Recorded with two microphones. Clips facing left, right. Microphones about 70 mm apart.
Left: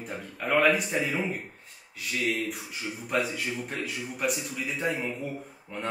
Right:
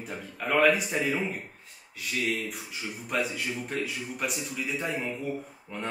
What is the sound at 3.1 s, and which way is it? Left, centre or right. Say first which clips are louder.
Speech: left 1 dB; centre.